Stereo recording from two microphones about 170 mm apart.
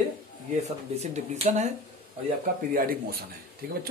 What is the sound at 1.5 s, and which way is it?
Speech, 45° right (ahead or behind).